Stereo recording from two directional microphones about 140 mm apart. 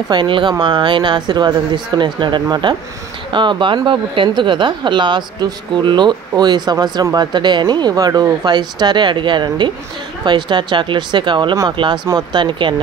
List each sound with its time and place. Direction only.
0.1 s speech: 35° right (ahead or behind)